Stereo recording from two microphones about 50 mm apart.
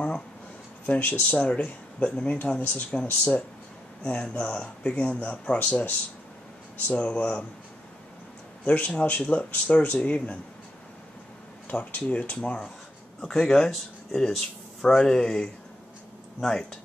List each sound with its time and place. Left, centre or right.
0.8 s speech: left
8.6 s speech: left
11.7 s speech: left
13.2 s speech: centre